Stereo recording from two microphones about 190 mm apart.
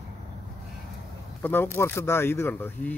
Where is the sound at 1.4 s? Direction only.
10° left (ahead or behind).